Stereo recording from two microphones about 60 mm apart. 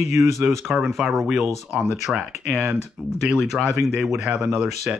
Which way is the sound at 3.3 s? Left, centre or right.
Centre.